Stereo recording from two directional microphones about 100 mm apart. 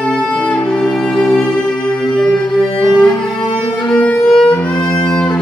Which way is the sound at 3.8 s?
15° left (ahead or behind).